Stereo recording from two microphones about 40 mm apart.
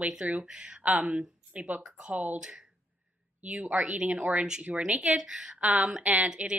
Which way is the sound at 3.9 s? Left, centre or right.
Right.